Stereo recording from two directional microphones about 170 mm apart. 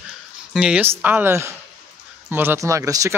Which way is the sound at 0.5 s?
5° right (ahead or behind).